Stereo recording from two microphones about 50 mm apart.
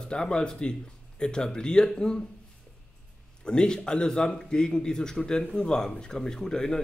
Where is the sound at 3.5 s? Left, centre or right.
Centre.